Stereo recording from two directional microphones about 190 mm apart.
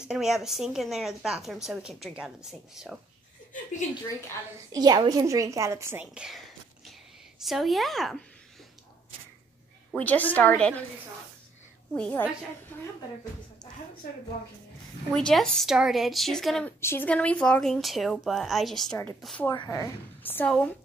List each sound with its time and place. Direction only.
0.0 s a woman's voice: 5° right (ahead or behind)
4.7 s a woman's voice: 20° right (ahead or behind); by 8.2 s centre (ahead or behind)
9.9 s a woman's voice: 10° left (ahead or behind)
11.9 s a woman's voice: 10° left (ahead or behind)
14.0 s a woman's voice: 50° left (ahead or behind)
15.1 s a woman's voice: 5° left (ahead or behind)
19.5 s a woman's voice: 20° left (ahead or behind)